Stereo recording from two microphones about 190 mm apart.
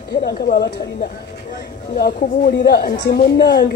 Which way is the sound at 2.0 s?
50° left (ahead or behind).